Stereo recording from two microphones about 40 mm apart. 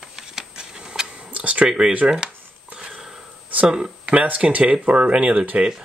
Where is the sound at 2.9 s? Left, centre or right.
Centre.